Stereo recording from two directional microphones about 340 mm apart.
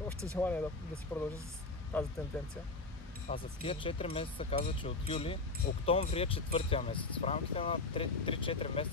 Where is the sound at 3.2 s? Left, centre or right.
Centre.